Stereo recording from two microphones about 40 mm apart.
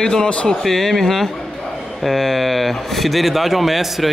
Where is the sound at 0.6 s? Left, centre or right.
Centre.